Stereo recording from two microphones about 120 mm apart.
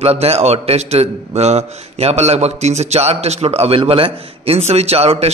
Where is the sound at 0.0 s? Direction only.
60° right (ahead or behind).